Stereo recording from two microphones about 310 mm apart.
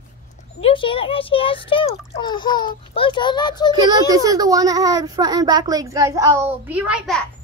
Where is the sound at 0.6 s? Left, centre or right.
Centre.